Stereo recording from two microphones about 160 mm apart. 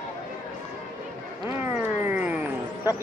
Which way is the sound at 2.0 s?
10° right (ahead or behind).